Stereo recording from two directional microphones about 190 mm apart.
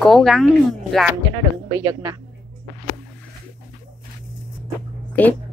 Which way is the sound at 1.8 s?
20° right (ahead or behind).